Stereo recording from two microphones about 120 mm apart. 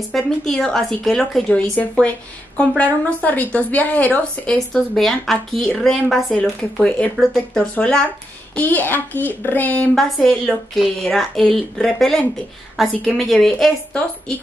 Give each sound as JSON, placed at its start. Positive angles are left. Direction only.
{"t": 0.1, "sound": "speech", "side_deg": 5}
{"t": 9.9, "sound": "speech", "side_deg": 0}